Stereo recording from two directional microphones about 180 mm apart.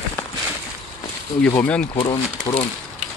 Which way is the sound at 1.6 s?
5° left (ahead or behind).